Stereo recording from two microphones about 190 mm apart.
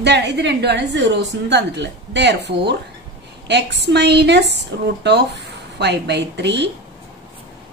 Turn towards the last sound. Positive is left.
turn(degrees=-65)  # may be behind; listen again after turning